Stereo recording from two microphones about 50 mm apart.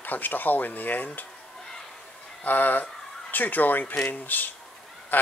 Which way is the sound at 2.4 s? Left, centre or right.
Left.